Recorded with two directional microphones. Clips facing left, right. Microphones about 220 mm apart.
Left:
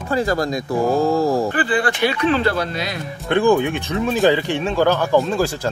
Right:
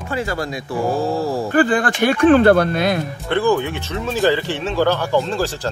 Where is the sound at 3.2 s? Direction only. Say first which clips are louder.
Left 3 dB; 15° left (ahead or behind).